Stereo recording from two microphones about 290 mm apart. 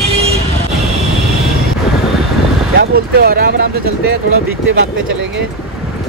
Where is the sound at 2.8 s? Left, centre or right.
Right.